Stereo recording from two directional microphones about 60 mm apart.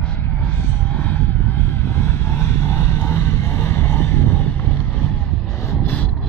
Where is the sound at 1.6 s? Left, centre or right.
Left.